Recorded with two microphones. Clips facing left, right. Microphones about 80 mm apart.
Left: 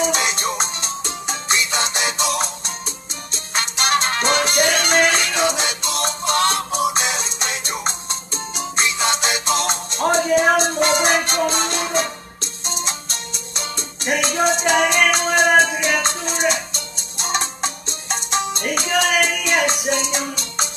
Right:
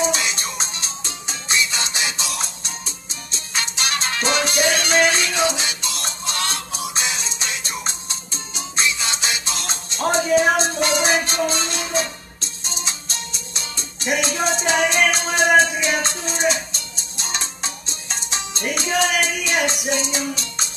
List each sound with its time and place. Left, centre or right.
0.0 s music: left